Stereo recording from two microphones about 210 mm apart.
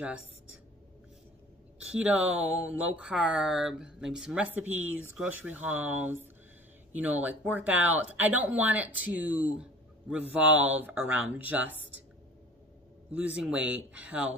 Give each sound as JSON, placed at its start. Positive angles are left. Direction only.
{"t": 1.8, "sound": "speech", "side_deg": -5}
{"t": 13.1, "sound": "speech", "side_deg": -5}